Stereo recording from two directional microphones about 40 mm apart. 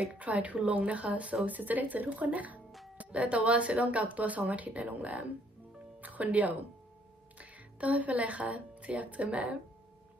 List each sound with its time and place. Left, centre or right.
0.0 s speech: right